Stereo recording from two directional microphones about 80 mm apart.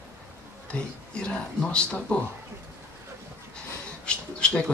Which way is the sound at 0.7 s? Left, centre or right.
Centre.